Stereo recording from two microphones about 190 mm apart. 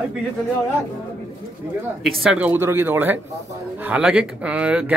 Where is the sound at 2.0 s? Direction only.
Centre (ahead or behind).